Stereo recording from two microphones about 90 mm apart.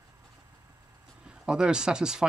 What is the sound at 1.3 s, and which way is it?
Speech, 10° right (ahead or behind).